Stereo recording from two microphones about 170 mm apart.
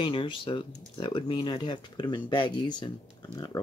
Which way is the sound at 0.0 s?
30° left (ahead or behind).